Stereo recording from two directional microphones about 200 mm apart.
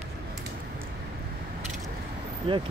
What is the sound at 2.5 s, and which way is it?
Speech, 25° right (ahead or behind).